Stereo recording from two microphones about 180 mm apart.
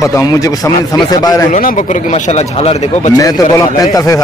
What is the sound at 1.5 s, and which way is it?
Speech, 50° left (ahead or behind).